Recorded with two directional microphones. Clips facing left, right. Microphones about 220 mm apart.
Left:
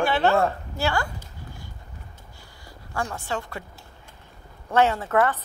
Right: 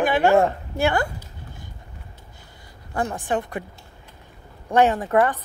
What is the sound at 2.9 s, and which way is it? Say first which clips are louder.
Speech: right 5 dB; 20° right (ahead or behind).